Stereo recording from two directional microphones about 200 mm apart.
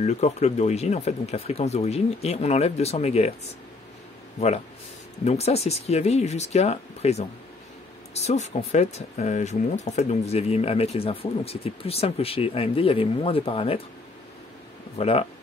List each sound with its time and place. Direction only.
0.0 s speech: 35° left (ahead or behind)
5.2 s speech: 30° left (ahead or behind)
15.0 s speech: 30° left (ahead or behind)